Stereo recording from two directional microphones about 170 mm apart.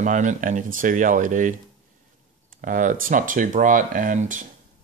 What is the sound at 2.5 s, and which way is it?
Speech, 50° right (ahead or behind).